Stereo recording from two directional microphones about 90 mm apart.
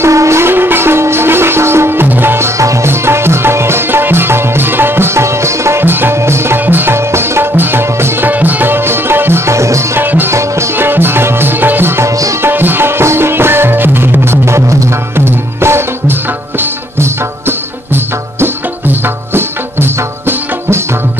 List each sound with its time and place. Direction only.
0.0 s music: 35° right (ahead or behind)
12.2 s tabla: 35° right (ahead or behind)
12.4 s music: 25° right (ahead or behind)